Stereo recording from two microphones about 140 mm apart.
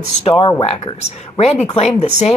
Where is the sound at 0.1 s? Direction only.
45° left (ahead or behind).